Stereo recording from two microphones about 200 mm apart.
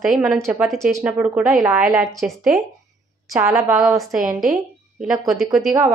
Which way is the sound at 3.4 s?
15° right (ahead or behind).